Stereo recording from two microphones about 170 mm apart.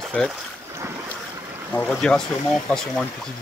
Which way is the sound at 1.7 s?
10° left (ahead or behind).